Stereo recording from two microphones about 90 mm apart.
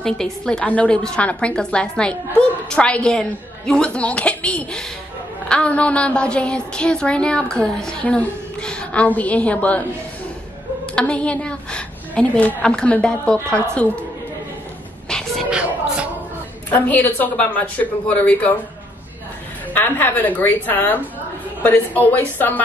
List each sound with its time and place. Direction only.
0.0 s a woman's voice: 5° left (ahead or behind)
11.0 s a woman's voice: 15° left (ahead or behind)
15.0 s a sound: 5° left (ahead or behind)
16.7 s a woman's voice: 20° left (ahead or behind)
19.7 s a woman's voice: 20° left (ahead or behind)